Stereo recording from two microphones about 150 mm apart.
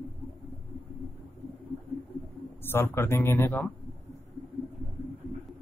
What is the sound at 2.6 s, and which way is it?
Speech, 15° left (ahead or behind).